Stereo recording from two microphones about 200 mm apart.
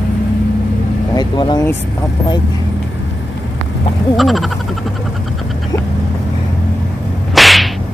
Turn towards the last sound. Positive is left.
turn(degrees=0)  # may be behind; listen again after turning